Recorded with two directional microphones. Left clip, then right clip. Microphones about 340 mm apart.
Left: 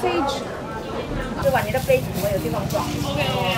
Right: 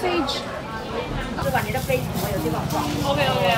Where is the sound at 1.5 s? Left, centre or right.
Centre.